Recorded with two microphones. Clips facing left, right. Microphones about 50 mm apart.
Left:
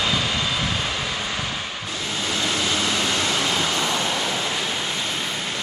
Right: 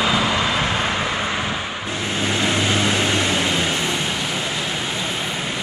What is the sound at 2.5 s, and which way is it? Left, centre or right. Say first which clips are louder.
Vehicle: right 3 dB; right.